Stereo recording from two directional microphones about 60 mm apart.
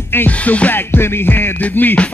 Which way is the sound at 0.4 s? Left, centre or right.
Left.